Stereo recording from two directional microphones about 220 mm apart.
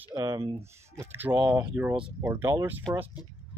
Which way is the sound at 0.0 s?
15° right (ahead or behind).